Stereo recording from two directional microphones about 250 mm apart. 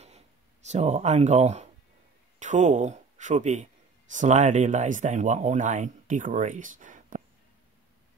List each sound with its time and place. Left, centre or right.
0.7 s speech: right